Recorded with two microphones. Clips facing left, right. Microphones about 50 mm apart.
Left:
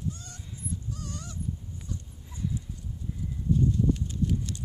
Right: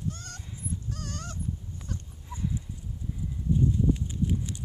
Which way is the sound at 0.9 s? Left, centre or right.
Right.